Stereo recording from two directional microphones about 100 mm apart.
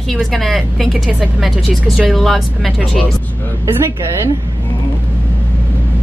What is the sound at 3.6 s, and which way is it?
Speech, 30° right (ahead or behind).